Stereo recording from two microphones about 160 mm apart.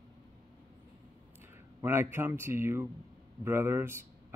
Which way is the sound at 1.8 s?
15° right (ahead or behind).